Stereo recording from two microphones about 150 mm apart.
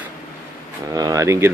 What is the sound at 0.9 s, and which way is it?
Speech, 25° right (ahead or behind).